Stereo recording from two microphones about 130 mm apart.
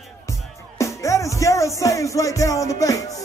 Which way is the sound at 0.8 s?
25° left (ahead or behind).